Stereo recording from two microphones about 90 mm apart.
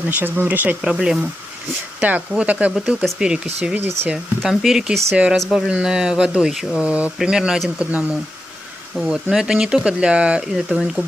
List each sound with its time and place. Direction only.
0.1 s speech: 20° right (ahead or behind)
0.8 s speech: 5° right (ahead or behind)
2.0 s speech: 15° right (ahead or behind)
3.8 s speech: 25° right (ahead or behind)
4.1 s speech: 5° right (ahead or behind)
8.9 s speech: 5° right (ahead or behind)